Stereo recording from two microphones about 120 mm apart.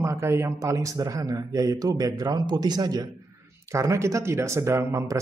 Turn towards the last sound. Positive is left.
turn(degrees=-25)  # may be behind; listen again after turning